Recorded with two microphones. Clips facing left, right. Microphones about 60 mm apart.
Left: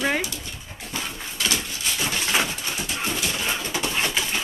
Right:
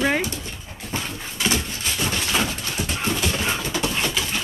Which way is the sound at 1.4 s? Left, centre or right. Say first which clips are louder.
Right 3 dB; right.